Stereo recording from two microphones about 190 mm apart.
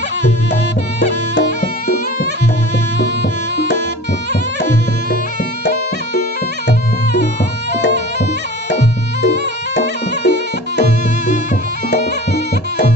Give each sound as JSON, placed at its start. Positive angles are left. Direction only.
{"t": 7.7, "sound": "music", "side_deg": 60}
{"t": 9.8, "sound": "music", "side_deg": 65}